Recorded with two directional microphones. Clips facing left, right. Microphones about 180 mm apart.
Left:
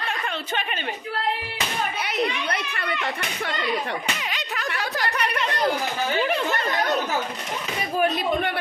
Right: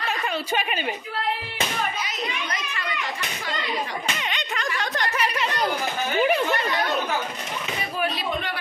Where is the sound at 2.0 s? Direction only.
60° left (ahead or behind).